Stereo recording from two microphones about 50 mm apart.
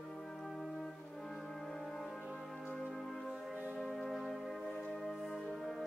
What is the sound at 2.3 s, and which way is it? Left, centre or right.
Music, centre.